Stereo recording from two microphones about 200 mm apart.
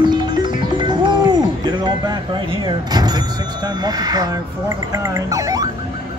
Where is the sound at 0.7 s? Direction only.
20° right (ahead or behind).